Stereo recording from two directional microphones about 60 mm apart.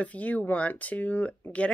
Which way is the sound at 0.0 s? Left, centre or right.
Left.